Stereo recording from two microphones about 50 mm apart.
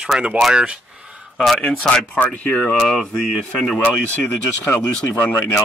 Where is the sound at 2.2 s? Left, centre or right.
Left.